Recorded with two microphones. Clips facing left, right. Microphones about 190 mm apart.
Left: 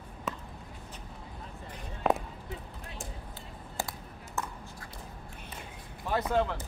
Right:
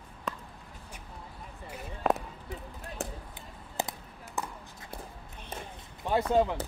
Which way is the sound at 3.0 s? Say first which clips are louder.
Right 8 dB; 65° right (ahead or behind).